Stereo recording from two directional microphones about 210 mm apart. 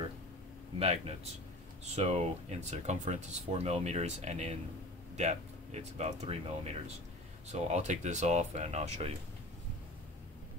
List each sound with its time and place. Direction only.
0.7 s speech: 30° right (ahead or behind)